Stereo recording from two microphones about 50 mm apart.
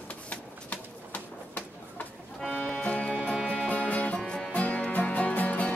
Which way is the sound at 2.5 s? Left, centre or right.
Left.